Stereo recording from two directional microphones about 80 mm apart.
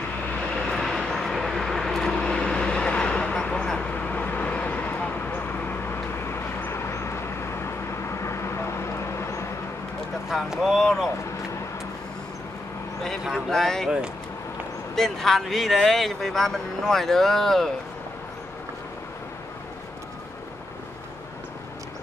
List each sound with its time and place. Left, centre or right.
0.6 s vehicle: centre; by 9.5 s left
10.3 s a sound: centre
13.5 s speech: centre
15.0 s speech: centre